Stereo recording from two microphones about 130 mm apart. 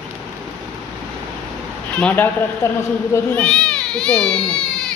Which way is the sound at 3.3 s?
5° left (ahead or behind).